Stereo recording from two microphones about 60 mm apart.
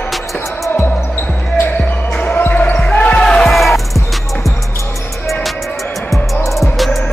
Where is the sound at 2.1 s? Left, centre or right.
Left.